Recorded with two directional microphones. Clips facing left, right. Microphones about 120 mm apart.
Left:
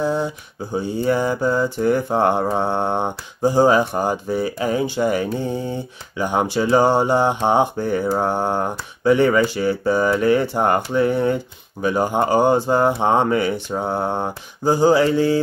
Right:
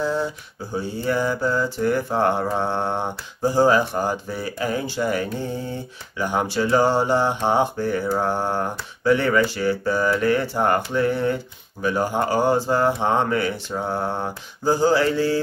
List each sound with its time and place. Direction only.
0.0 s a sound: 20° left (ahead or behind)
0.7 s mantra: 20° left (ahead or behind)
11.8 s speech: 20° left (ahead or behind)